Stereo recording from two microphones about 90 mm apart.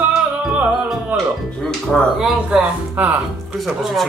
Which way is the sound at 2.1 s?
10° right (ahead or behind).